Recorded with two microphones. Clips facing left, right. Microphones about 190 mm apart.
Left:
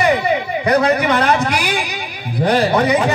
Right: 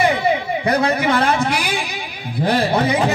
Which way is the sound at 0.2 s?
30° right (ahead or behind).